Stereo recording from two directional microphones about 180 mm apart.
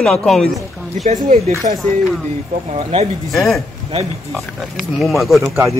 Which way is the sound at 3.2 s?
Centre (ahead or behind).